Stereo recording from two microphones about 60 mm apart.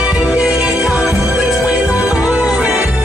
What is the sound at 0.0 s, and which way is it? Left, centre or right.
Music, right.